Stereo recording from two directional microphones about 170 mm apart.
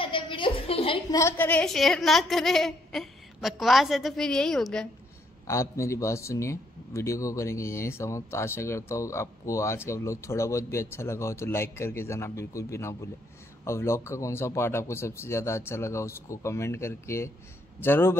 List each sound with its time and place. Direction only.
0.0 s a sound: 30° left (ahead or behind)
1.1 s a woman's voice: 15° left (ahead or behind)
5.5 s a man's voice: 15° left (ahead or behind)